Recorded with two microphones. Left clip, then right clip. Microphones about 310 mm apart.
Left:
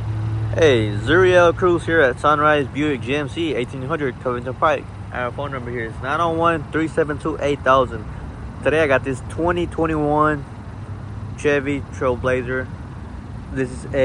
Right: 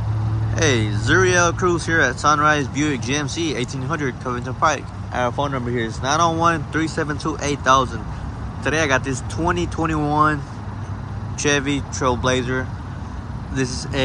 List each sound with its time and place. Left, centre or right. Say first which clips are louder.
0.6 s speech: left 5 dB; centre